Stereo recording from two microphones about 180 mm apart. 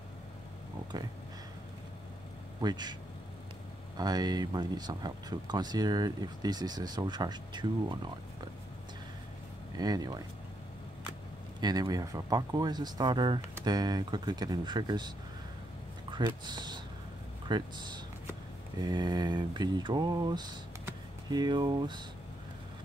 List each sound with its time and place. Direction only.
0.9 s speech: 20° right (ahead or behind)
2.6 s speech: 25° right (ahead or behind)
9.8 s speech: 20° right (ahead or behind)
11.6 s speech: 20° right (ahead or behind)